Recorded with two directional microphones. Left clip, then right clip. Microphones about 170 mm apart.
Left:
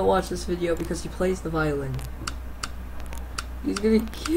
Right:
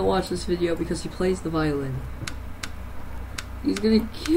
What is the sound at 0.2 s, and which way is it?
Speech, 65° left (ahead or behind).